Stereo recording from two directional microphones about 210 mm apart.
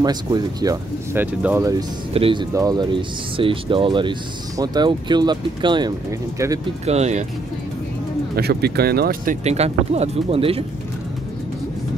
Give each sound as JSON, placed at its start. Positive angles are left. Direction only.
{"t": 0.0, "sound": "speech", "side_deg": -20}
{"t": 6.9, "sound": "speech", "side_deg": -30}
{"t": 8.4, "sound": "speech", "side_deg": -50}